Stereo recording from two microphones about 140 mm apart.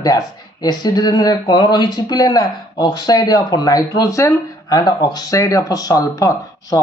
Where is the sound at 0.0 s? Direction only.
30° left (ahead or behind).